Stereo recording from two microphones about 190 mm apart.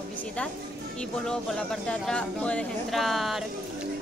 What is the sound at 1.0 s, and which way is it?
A woman's voice, 5° left (ahead or behind).